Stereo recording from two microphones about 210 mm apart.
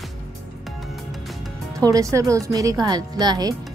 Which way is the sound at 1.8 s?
15° right (ahead or behind).